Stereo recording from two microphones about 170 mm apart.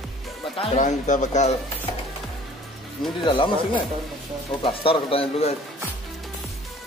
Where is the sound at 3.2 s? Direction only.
30° left (ahead or behind).